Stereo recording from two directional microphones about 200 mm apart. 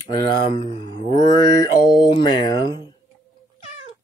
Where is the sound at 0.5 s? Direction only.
20° left (ahead or behind).